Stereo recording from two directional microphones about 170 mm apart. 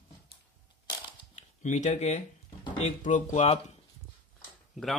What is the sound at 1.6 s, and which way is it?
Speech, 45° left (ahead or behind).